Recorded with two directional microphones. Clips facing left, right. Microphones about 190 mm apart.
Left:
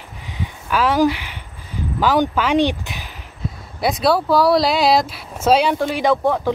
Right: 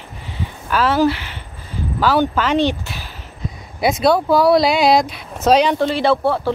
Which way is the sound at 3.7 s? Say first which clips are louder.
Right 2 dB; centre (ahead or behind).